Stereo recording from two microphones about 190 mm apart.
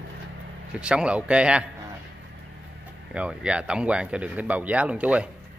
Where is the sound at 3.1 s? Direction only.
5° right (ahead or behind).